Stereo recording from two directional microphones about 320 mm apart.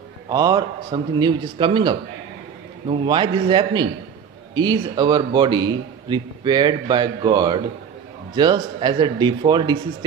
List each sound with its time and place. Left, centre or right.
0.3 s a man's voice: centre